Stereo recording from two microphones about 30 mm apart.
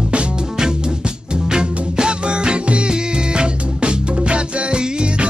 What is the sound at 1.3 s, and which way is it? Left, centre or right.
Music, right.